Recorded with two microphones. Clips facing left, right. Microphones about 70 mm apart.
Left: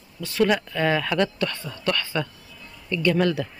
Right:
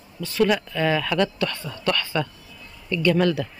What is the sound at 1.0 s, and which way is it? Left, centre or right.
Speech, left.